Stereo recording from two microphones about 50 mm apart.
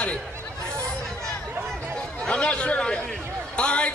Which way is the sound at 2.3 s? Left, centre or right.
Left.